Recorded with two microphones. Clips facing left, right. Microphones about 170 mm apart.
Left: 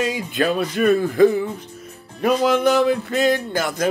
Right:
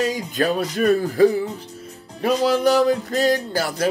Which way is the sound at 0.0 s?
40° right (ahead or behind).